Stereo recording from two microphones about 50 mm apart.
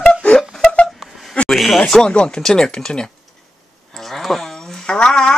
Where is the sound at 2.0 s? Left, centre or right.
Centre.